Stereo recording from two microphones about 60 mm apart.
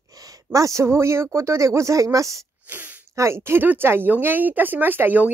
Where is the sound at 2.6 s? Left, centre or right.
Right.